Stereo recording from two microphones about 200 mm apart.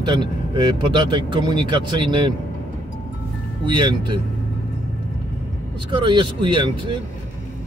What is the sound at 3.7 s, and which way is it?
Speech, 25° right (ahead or behind).